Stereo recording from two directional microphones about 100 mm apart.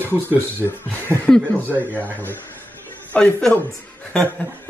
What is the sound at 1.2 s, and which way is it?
Speech, 5° left (ahead or behind).